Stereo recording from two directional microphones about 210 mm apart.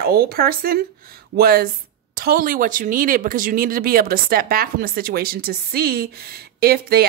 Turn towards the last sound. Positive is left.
turn(degrees=-45)  # may be behind; listen again after turning